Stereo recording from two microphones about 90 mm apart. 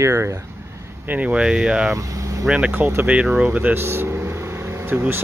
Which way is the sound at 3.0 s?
15° right (ahead or behind).